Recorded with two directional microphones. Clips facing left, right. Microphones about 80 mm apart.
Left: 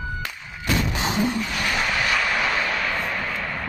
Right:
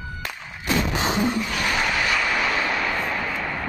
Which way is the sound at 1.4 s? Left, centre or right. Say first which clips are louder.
Right 1 dB; centre.